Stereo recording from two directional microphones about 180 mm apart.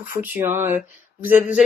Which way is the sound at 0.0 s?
10° right (ahead or behind).